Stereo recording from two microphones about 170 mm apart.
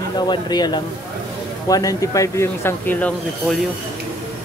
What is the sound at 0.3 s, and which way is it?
Speech, 25° left (ahead or behind).